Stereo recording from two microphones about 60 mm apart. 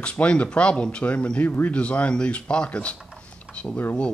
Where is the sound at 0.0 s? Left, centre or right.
Centre.